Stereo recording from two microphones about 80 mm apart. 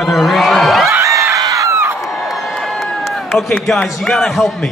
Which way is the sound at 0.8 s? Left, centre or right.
Right.